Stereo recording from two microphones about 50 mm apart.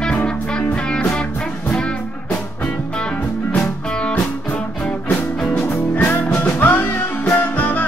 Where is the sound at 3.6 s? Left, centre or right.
Left.